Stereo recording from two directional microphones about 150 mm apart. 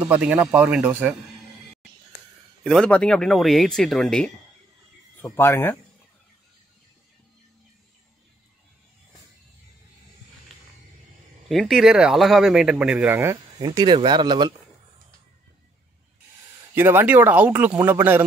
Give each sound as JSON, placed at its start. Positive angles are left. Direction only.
{"t": 0.1, "sound": "speech", "side_deg": -10}
{"t": 2.6, "sound": "speech", "side_deg": 5}
{"t": 5.2, "sound": "speech", "side_deg": 15}
{"t": 11.4, "sound": "speech", "side_deg": 0}
{"t": 13.7, "sound": "speech", "side_deg": -30}
{"t": 16.7, "sound": "speech", "side_deg": -15}